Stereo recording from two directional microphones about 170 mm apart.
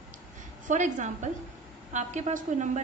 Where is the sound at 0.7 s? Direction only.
45° right (ahead or behind).